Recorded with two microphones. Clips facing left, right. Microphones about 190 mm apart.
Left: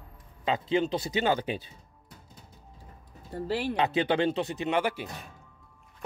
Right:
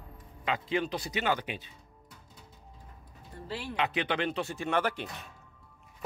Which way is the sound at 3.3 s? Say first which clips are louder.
Left 9 dB; 75° left (ahead or behind).